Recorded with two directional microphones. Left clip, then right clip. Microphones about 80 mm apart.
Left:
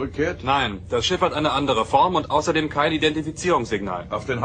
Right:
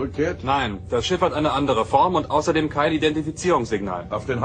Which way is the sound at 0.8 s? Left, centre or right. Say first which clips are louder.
Even; centre.